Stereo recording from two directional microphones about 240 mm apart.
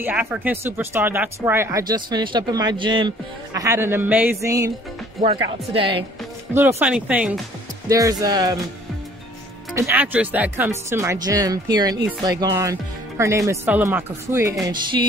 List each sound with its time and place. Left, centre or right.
0.0 s speech: centre
5.2 s a woman's voice: right
6.8 s speech: centre
9.8 s speech: centre